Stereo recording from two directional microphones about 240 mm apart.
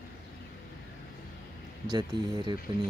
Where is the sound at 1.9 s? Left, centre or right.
Centre.